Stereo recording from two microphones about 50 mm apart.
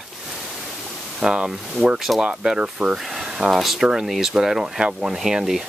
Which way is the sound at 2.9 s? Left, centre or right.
Centre.